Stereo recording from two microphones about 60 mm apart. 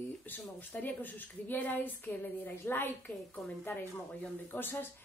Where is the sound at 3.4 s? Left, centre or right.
Centre.